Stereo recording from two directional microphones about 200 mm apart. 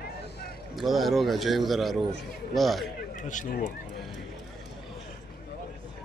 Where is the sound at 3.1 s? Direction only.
40° left (ahead or behind).